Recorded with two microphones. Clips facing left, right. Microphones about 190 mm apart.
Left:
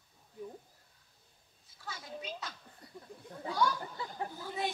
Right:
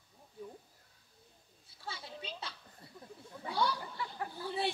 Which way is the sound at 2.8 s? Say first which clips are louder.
Left 4 dB; 25° right (ahead or behind).